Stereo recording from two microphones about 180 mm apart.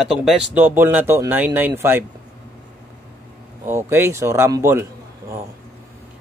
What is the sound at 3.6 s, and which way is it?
Speech, 15° right (ahead or behind).